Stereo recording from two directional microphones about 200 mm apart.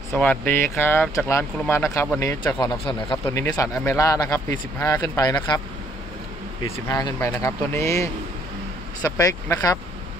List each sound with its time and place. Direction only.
0.1 s speech: 5° left (ahead or behind)
6.9 s speech: 20° left (ahead or behind)